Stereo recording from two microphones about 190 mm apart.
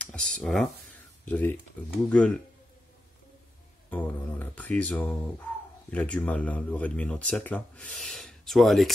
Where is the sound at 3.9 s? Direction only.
10° left (ahead or behind).